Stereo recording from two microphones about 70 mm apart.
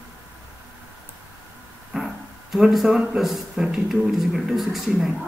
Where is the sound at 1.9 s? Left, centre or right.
Centre.